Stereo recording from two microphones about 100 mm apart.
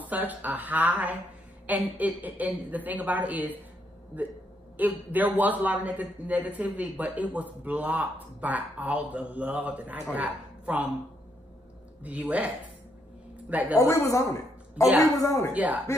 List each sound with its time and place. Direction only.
0.0 s a man's voice: 15° right (ahead or behind)
12.0 s a man's voice: 15° right (ahead or behind)
13.5 s a woman's voice: 15° right (ahead or behind)
13.7 s a woman's voice: 30° left (ahead or behind)
15.5 s a man's voice: 15° right (ahead or behind)